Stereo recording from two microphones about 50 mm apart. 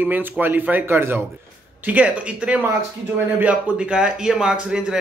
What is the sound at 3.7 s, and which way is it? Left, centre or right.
Speech, centre.